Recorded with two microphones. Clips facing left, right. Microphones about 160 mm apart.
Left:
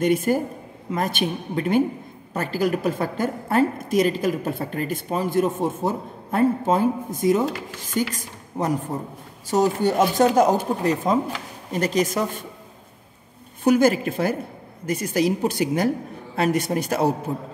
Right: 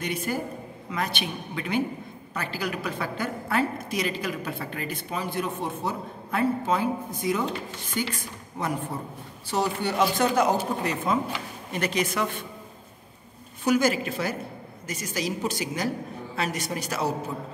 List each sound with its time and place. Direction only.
0.0 s a woman's voice: 45° left (ahead or behind)
13.7 s a woman's voice: 55° left (ahead or behind)